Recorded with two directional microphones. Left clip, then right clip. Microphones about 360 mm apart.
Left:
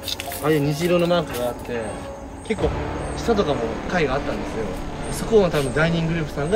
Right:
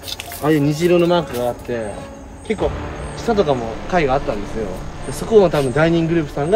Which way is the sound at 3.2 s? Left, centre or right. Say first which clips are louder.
Right 4 dB; centre.